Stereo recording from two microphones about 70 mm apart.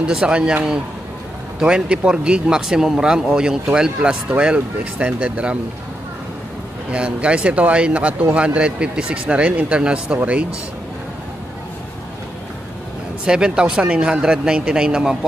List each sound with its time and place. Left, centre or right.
0.0 s speech: centre
1.6 s speech: centre
6.9 s speech: centre
13.2 s speech: centre